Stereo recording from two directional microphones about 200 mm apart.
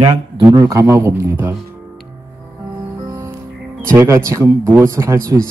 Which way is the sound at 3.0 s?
15° right (ahead or behind).